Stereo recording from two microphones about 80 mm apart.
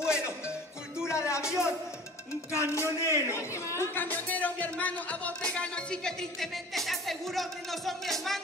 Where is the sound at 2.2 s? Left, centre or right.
Left.